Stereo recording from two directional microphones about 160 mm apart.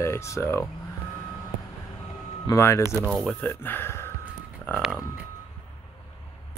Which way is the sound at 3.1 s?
5° left (ahead or behind).